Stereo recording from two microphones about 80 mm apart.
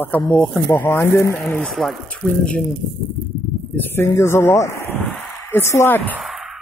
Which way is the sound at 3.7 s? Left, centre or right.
Left.